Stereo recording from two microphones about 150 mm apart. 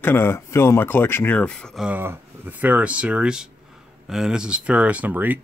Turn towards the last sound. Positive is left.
turn(degrees=-10)  # may be behind; listen again after turning